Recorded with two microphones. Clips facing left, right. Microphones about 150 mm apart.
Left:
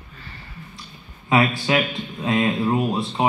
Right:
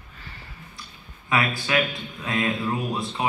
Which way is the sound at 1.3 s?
25° left (ahead or behind).